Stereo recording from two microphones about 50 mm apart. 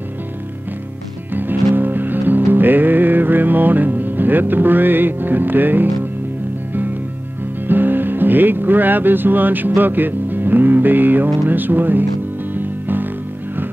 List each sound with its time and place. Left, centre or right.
1.3 s music: right
7.6 s music: right
11.4 s speech: right
12.5 s music: right